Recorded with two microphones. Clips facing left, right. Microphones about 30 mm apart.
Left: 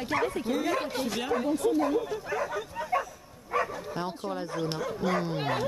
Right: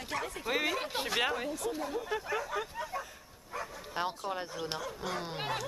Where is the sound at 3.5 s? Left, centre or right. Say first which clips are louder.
Left 11 dB; left.